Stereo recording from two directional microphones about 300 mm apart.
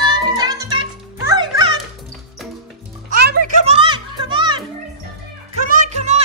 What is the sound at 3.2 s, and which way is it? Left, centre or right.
Music, right.